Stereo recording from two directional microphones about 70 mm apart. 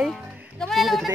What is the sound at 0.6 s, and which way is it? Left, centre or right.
Speech, centre.